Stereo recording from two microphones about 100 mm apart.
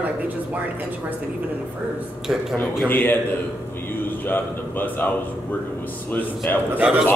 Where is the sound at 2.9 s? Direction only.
20° left (ahead or behind).